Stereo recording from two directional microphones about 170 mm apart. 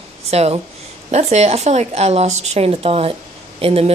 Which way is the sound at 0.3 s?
35° right (ahead or behind).